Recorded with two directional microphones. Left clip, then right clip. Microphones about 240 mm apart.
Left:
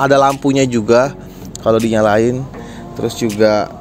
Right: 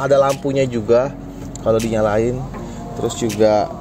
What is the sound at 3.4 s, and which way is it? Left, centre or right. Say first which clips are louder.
Speech: left 2 dB; left.